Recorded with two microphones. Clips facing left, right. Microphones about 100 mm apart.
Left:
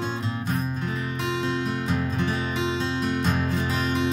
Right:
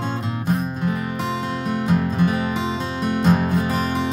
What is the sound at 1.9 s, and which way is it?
Music, 50° right (ahead or behind).